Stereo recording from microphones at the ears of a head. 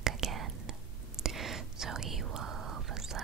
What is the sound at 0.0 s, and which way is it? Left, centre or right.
Whispering, right.